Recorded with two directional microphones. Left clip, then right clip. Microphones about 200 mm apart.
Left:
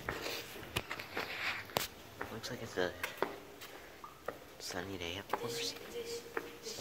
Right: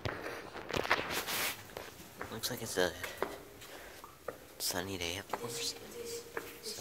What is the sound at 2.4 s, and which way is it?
Speech, 30° right (ahead or behind).